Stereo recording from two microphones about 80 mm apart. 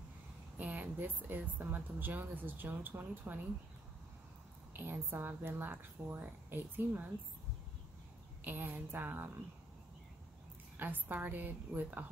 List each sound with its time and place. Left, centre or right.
0.6 s a woman's voice: right
4.7 s a woman's voice: right
8.5 s a woman's voice: right
10.8 s a woman's voice: right